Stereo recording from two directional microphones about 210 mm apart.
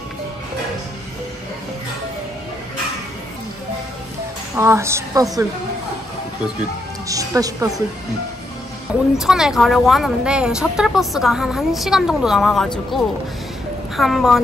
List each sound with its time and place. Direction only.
4.6 s a woman's voice: 15° right (ahead or behind)
7.1 s a woman's voice: 15° right (ahead or behind)
8.9 s speech: 5° right (ahead or behind)